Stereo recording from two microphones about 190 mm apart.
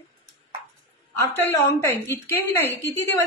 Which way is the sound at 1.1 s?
15° left (ahead or behind).